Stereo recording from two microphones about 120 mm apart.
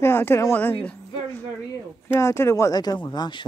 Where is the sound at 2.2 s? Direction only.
25° left (ahead or behind).